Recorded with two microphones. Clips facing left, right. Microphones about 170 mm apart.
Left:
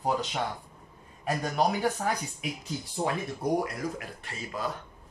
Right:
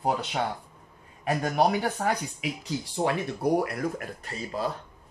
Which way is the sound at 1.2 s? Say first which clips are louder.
Right 3 dB; 65° right (ahead or behind).